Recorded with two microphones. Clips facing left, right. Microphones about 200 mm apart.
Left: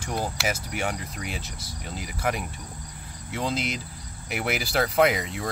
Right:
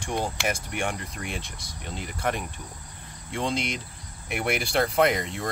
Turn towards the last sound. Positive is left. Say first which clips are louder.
# left 1 dB
turn(degrees=5)  # may be behind; listen again after turning